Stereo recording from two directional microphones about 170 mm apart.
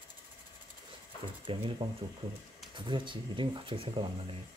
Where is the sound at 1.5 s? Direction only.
30° right (ahead or behind).